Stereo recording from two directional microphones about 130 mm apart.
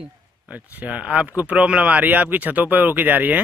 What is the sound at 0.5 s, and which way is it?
Speech, 10° right (ahead or behind).